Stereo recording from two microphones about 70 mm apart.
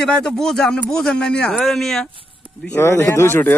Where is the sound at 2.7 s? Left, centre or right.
Left.